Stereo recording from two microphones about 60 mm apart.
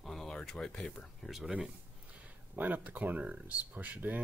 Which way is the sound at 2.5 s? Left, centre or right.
Right.